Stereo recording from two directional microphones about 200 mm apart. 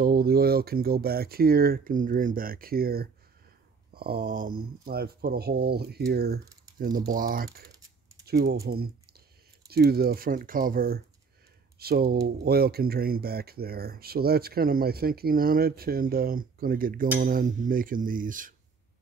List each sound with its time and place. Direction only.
0.0 s speech: 50° right (ahead or behind)